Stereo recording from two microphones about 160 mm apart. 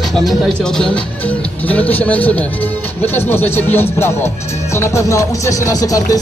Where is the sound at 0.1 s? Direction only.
Centre (ahead or behind).